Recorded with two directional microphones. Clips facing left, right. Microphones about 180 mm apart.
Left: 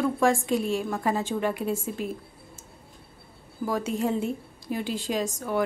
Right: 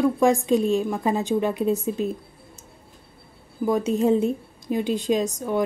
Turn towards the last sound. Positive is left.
turn(degrees=-20)  # may be behind; listen again after turning